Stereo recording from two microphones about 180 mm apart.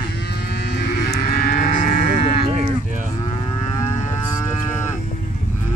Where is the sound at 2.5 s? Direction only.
45° right (ahead or behind).